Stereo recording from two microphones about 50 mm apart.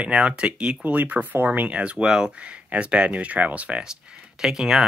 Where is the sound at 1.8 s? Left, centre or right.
Right.